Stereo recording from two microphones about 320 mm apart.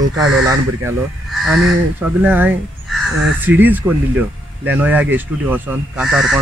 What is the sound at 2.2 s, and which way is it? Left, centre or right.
Speech, centre.